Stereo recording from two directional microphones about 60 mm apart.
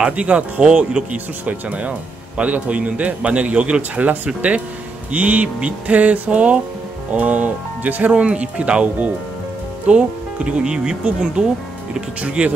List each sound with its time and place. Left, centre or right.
0.0 s speech: right